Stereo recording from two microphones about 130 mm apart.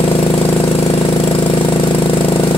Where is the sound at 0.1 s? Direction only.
45° left (ahead or behind).